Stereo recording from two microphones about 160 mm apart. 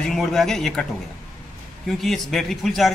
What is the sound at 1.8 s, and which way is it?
A man's voice, centre (ahead or behind).